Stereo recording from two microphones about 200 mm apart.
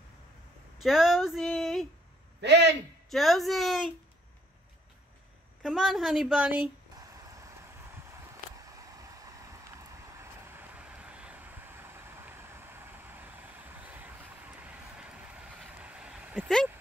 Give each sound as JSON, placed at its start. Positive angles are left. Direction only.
{"t": 0.7, "sound": "speech", "side_deg": 0}
{"t": 2.4, "sound": "a man's voice", "side_deg": -60}
{"t": 3.1, "sound": "speech", "side_deg": 0}
{"t": 5.6, "sound": "speech", "side_deg": 0}
{"t": 7.0, "sound": "a sound", "side_deg": -15}
{"t": 8.5, "sound": "vehicle", "side_deg": -15}